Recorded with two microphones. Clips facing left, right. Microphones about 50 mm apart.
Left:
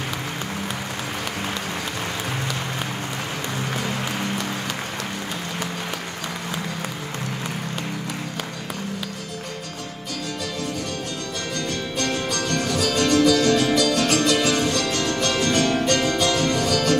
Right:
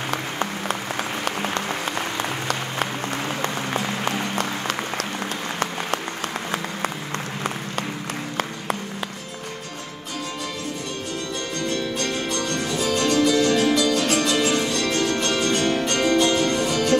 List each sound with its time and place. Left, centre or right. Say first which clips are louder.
12.6 s music: even; right